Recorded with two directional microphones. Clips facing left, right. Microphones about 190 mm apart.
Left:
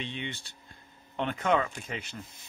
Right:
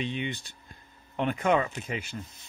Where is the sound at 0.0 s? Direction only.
15° right (ahead or behind).